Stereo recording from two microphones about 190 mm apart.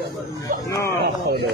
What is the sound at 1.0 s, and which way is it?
Speech, 55° right (ahead or behind).